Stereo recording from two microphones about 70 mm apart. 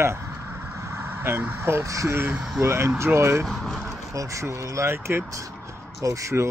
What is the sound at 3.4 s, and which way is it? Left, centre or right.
Speech, centre.